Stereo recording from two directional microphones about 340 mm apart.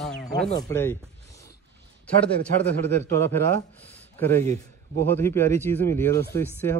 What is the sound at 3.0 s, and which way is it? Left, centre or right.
Speech, centre.